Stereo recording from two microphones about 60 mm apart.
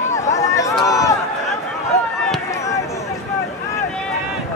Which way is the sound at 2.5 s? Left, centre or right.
Left.